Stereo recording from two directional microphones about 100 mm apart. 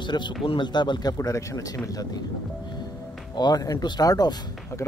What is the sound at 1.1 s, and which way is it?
Speech, 30° left (ahead or behind).